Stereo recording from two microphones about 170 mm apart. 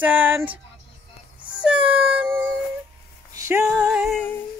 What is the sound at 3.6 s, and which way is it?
Music, 5° right (ahead or behind).